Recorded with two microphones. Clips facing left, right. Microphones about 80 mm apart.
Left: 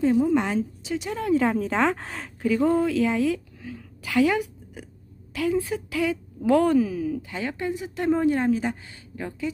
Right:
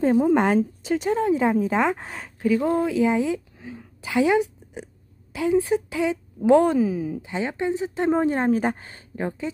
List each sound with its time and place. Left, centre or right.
0.0 s a woman's voice: right
1.1 s speech: right
1.6 s speech: centre
2.6 s a woman's voice: centre